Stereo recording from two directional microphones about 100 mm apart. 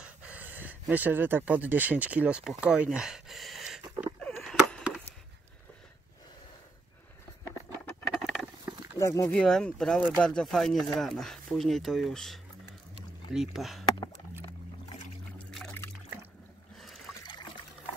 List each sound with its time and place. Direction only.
0.0 s speech: 10° right (ahead or behind)
4.4 s a sound: 5° left (ahead or behind)
8.2 s patter: 5° right (ahead or behind)
8.9 s speech: 25° left (ahead or behind)
9.3 s speech: 5° left (ahead or behind)
16.8 s trickle: centre (ahead or behind)